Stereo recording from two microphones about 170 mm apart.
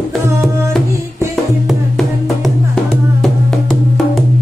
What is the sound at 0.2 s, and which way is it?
Music, 15° right (ahead or behind).